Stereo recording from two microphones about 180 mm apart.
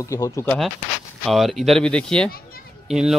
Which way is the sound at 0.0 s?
15° left (ahead or behind).